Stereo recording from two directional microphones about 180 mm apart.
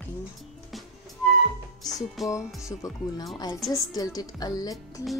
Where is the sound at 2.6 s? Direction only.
20° left (ahead or behind).